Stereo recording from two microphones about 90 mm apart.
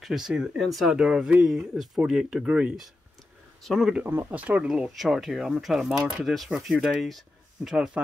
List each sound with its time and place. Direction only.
0.0 s speech: 5° right (ahead or behind)
4.1 s speech: 25° right (ahead or behind)
4.4 s speech: 15° right (ahead or behind)